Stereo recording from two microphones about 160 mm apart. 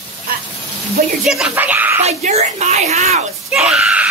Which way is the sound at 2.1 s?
40° right (ahead or behind).